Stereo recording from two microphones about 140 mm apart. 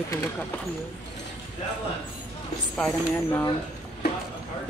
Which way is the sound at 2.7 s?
10° left (ahead or behind).